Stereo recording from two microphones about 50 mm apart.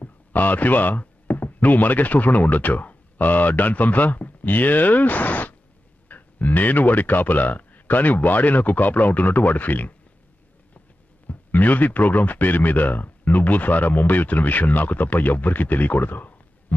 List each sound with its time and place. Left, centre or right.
0.0 s speech: left
11.2 s speech: left